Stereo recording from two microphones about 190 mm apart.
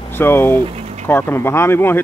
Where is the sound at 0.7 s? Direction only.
35° right (ahead or behind).